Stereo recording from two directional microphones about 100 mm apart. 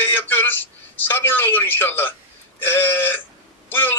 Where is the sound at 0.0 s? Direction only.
20° left (ahead or behind).